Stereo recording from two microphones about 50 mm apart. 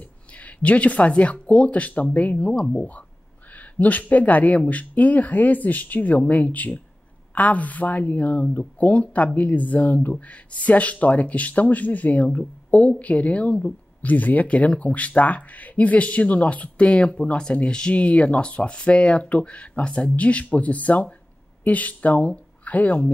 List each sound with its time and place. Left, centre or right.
0.0 s speech: left